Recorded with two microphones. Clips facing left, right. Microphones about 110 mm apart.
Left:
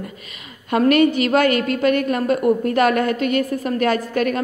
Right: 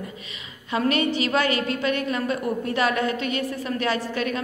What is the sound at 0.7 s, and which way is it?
A woman's voice, 55° left (ahead or behind).